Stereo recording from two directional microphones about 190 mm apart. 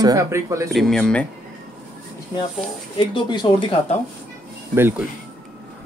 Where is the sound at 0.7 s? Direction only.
Centre (ahead or behind).